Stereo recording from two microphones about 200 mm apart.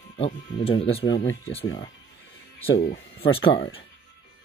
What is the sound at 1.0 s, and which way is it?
Speech, 65° left (ahead or behind).